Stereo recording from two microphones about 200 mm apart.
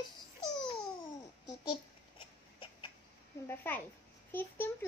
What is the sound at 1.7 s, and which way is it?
Babbling, 25° left (ahead or behind).